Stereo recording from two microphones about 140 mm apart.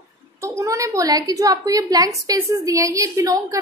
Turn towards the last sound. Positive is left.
turn(degrees=-25)  # may be behind; listen again after turning